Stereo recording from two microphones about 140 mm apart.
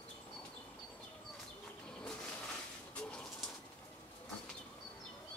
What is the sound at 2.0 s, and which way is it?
Bird, 10° left (ahead or behind).